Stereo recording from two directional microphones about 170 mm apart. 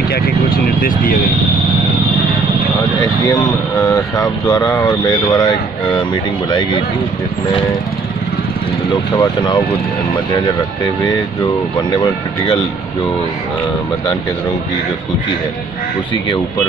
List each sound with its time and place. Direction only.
0.1 s speech: 60° left (ahead or behind)
3.0 s speech: 20° left (ahead or behind)
9.1 s speech: 25° left (ahead or behind)
11.9 s speech: 25° left (ahead or behind)